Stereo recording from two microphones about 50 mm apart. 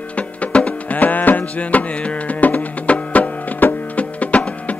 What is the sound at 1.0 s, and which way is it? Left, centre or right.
Music, left.